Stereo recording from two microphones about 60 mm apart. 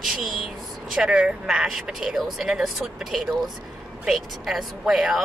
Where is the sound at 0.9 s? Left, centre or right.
Centre.